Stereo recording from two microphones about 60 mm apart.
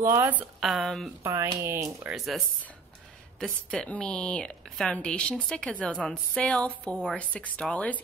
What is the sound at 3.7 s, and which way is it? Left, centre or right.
A woman's voice, centre.